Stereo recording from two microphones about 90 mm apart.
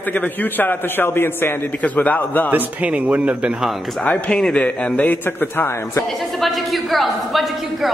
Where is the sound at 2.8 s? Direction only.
15° right (ahead or behind).